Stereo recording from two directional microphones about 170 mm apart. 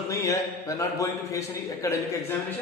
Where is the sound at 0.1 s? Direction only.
20° left (ahead or behind).